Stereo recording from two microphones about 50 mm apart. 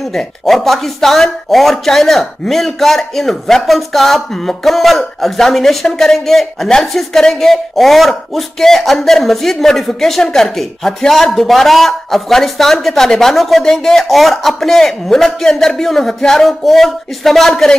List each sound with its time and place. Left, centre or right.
0.1 s a man's voice: centre